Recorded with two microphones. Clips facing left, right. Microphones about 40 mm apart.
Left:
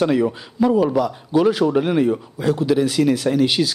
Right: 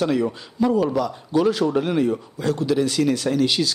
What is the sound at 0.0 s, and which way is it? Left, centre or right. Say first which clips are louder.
A man's voice: left 3 dB; centre.